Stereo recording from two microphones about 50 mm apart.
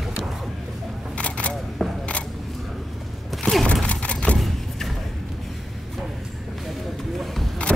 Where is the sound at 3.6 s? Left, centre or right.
Left.